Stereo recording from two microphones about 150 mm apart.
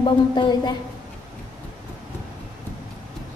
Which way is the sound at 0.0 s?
30° left (ahead or behind).